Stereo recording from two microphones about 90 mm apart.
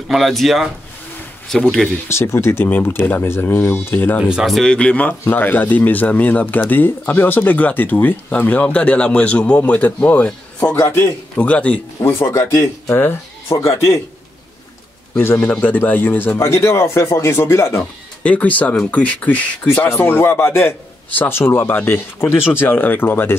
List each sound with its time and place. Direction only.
0.1 s speech: centre (ahead or behind)
2.0 s speech: 30° left (ahead or behind)
4.2 s speech: 5° right (ahead or behind)
4.6 s a man's voice: 10° left (ahead or behind)
12.0 s speech: 30° left (ahead or behind)
15.1 s speech: 25° left (ahead or behind)
18.2 s a man's voice: 15° left (ahead or behind)